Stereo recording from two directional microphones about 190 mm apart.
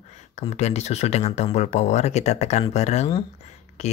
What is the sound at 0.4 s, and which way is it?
Speech, 35° left (ahead or behind).